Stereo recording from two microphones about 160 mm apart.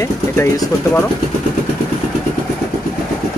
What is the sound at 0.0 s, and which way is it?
Speech, 20° left (ahead or behind).